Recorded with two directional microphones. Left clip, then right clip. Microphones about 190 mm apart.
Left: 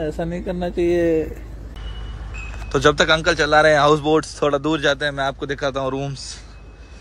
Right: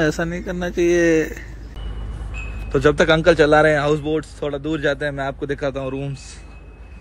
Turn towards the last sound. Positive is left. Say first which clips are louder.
# left 2 dB
turn(degrees=10)  # may be behind; listen again after turning